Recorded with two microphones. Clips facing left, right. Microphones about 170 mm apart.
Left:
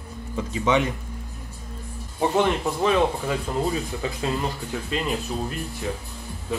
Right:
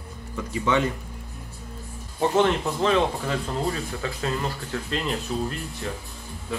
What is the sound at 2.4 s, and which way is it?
Speech, 10° left (ahead or behind).